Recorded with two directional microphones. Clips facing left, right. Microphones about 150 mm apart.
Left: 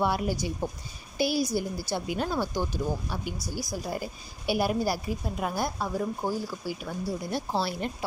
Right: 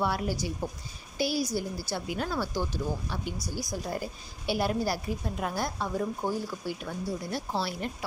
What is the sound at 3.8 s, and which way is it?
A woman's voice, 10° left (ahead or behind).